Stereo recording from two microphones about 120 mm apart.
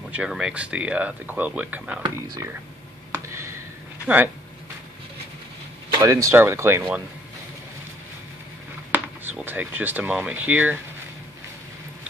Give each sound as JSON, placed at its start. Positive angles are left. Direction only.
{"t": 0.1, "sound": "speech", "side_deg": -5}
{"t": 2.0, "sound": "speech", "side_deg": -40}
{"t": 3.3, "sound": "a sound", "side_deg": -25}
{"t": 4.0, "sound": "speech", "side_deg": -15}
{"t": 5.9, "sound": "speech", "side_deg": -25}
{"t": 8.9, "sound": "speech", "side_deg": -15}